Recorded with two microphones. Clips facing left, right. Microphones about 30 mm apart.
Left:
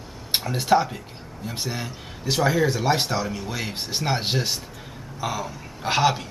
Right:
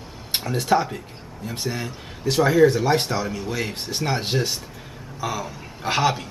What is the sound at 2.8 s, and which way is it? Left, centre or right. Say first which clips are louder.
Speech: right 2 dB; centre.